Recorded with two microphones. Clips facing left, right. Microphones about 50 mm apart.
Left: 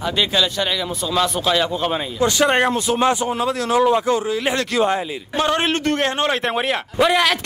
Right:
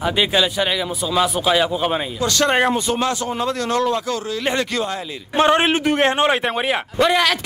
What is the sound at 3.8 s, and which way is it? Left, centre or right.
A man's voice, left.